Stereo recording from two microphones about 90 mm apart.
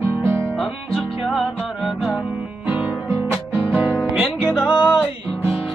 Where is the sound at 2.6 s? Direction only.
15° right (ahead or behind).